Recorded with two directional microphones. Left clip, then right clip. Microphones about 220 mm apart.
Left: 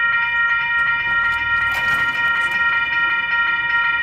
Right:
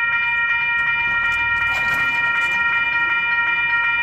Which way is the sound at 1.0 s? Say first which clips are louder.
Left 1 dB; centre (ahead or behind).